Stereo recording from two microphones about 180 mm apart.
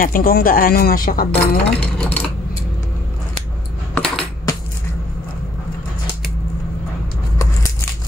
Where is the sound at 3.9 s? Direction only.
5° left (ahead or behind).